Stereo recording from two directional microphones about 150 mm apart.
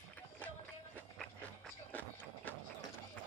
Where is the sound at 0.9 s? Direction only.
10° left (ahead or behind).